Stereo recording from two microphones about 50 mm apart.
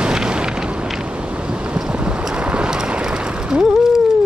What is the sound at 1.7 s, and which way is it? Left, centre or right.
Vehicle, right.